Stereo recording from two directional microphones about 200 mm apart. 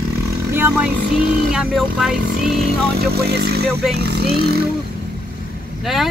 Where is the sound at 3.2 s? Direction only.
55° right (ahead or behind).